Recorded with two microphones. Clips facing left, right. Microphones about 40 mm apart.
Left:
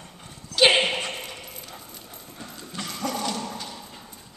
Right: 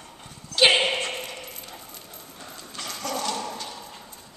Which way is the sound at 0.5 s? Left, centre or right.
Centre.